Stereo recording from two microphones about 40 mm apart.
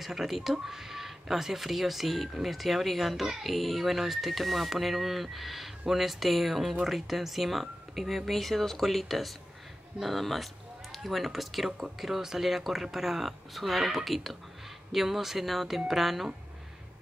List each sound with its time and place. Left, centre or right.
0.0 s speech: centre